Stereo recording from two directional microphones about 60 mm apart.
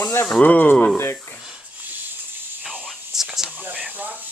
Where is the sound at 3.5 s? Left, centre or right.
Right.